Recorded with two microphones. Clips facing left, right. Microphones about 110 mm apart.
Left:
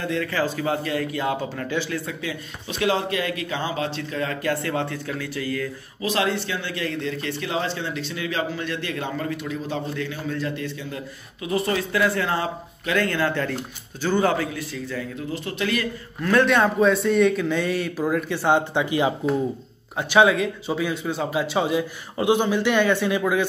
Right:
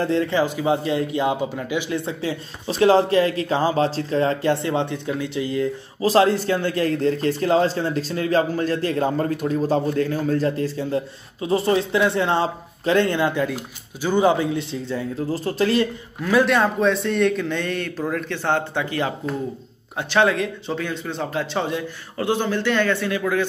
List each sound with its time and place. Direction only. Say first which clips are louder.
0.0 s a man's voice: right 5 dB; 30° right (ahead or behind)
6.0 s a man's voice: right 7 dB; 35° right (ahead or behind)
16.2 s speech: right 1 dB; 5° right (ahead or behind); by 23.4 s 15° left (ahead or behind)